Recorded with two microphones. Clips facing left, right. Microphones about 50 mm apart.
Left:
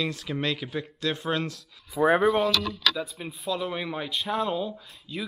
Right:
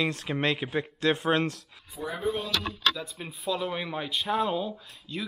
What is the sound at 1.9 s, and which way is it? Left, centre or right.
Speech, left.